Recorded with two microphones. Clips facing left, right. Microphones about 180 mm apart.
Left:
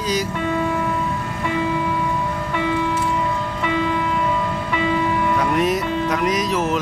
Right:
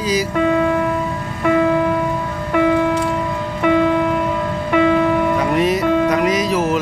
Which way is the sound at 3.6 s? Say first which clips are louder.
Right 8 dB; 55° right (ahead or behind).